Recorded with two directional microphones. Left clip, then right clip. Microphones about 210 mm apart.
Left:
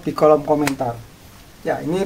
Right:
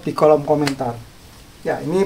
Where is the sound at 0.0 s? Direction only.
10° right (ahead or behind).